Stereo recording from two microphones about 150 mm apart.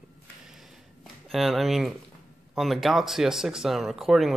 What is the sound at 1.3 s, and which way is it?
Speech, centre (ahead or behind).